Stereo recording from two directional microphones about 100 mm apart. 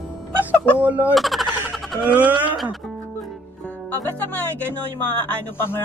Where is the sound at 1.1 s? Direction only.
Centre (ahead or behind).